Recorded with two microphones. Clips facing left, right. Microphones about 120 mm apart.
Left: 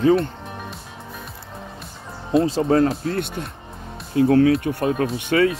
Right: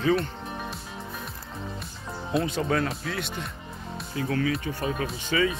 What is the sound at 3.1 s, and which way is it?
Speech, 50° left (ahead or behind).